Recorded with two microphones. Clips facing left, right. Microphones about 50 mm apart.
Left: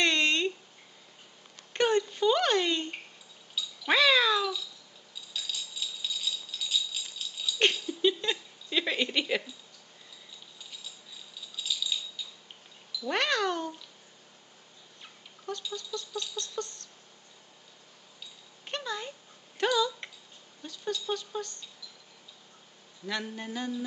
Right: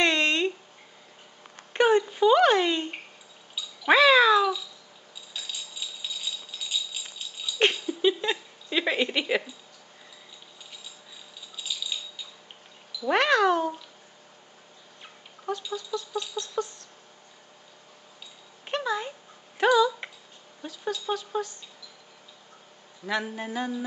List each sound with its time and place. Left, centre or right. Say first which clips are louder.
0.0 s a sound: right 3 dB; centre
1.7 s babbling: right 5 dB; centre
3.5 s cat: right 6 dB; centre
5.1 s rattle: even; centre
11.5 s rattle: left 1 dB; centre
13.0 s cat: right 7 dB; centre
15.4 s chicken: right 5 dB; centre
18.7 s a sound: right 7 dB; centre
23.2 s a sound: right 4 dB; centre